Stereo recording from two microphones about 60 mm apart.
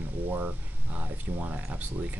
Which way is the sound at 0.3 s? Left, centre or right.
Right.